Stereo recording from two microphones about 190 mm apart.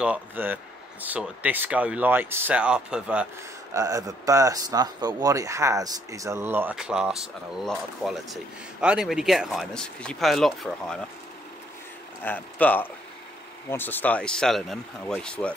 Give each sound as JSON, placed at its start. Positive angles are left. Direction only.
{"t": 0.0, "sound": "speech", "side_deg": -10}
{"t": 3.7, "sound": "speech", "side_deg": -15}
{"t": 12.2, "sound": "speech", "side_deg": 10}